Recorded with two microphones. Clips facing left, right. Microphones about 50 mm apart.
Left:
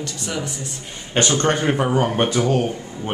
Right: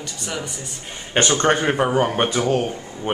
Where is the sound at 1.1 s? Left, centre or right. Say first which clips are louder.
Right 1 dB; centre.